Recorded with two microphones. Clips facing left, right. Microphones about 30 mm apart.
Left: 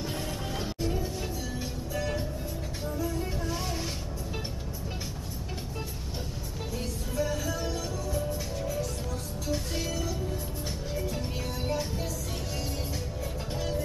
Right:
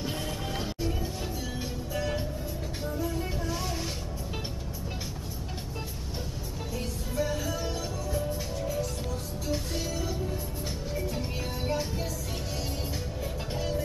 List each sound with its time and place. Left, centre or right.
0.0 s music: centre
3.0 s music: centre
3.3 s music: centre
6.7 s music: centre
11.1 s music: centre